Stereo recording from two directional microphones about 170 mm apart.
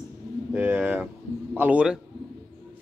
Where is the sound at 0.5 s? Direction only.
10° right (ahead or behind).